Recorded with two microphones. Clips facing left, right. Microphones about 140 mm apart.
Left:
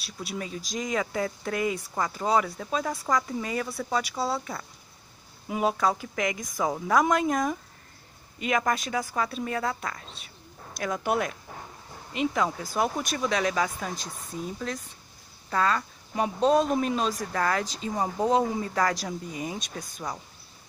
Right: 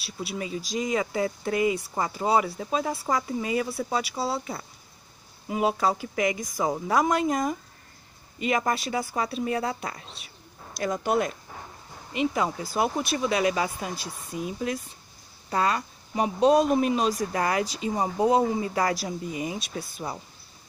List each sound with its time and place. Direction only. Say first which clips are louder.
0.0 s speech: right 2 dB; 5° right (ahead or behind)
10.8 s speech: right 2 dB; centre (ahead or behind)